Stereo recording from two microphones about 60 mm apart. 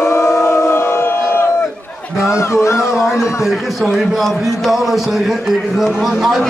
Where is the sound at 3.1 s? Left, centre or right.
Left.